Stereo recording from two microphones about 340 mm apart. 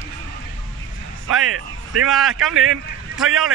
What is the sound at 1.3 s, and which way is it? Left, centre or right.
Speech, right.